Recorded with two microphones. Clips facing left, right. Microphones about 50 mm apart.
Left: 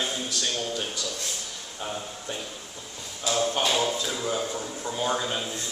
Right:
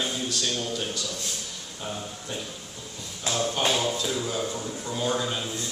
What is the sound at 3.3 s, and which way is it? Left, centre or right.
A man's voice, centre.